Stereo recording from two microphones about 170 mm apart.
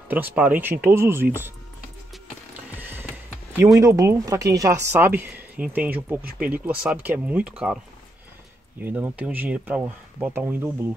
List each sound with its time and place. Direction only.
0.1 s speech: 10° right (ahead or behind)
2.5 s a sound: 10° right (ahead or behind)
3.8 s speech: 15° right (ahead or behind)